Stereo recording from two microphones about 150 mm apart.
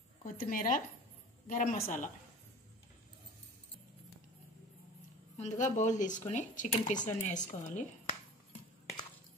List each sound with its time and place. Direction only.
0.2 s speech: 65° left (ahead or behind)
5.4 s speech: 55° left (ahead or behind)